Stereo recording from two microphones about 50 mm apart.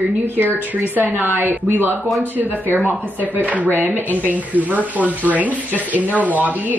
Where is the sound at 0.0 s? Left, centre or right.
Right.